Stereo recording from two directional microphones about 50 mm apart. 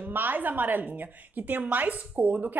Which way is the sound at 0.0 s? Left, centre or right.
Right.